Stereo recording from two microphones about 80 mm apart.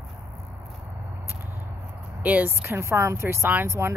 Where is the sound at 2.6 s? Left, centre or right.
Right.